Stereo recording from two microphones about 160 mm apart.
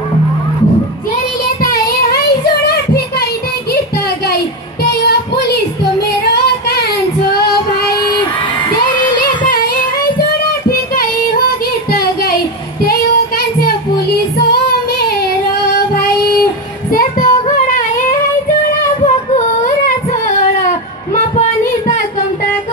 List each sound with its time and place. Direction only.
1.6 s child singing: 75° left (ahead or behind)
5.0 s music: 85° left
6.2 s female singing: 80° left
8.9 s singing: 30° left (ahead or behind)
10.7 s child singing: 70° left (ahead or behind)
11.9 s a sound: 70° left (ahead or behind)
16.9 s child singing: 60° left (ahead or behind)